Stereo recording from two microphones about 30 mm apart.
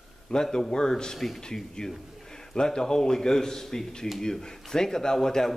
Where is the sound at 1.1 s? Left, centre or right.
Centre.